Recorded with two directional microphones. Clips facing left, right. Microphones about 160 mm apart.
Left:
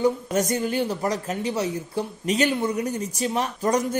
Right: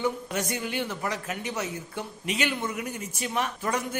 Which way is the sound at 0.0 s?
40° left (ahead or behind).